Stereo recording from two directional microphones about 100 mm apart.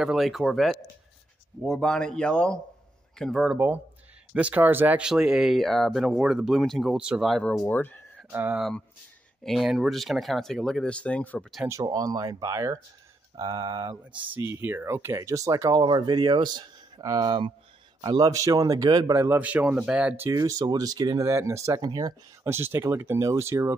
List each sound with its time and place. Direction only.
0.0 s speech: centre (ahead or behind)
3.5 s speech: 20° right (ahead or behind); by 7.4 s centre (ahead or behind)
7.6 s speech: 20° left (ahead or behind)
8.3 s speech: 20° right (ahead or behind)
9.4 s speech: centre (ahead or behind)
11.8 s speech: 40° right (ahead or behind)
15.8 s speech: 50° right (ahead or behind)
19.1 s speech: 25° right (ahead or behind)
20.2 s speech: 35° right (ahead or behind)
22.4 s speech: 25° right (ahead or behind)